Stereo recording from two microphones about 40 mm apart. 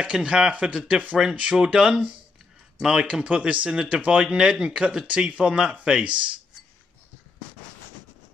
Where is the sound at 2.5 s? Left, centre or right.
Centre.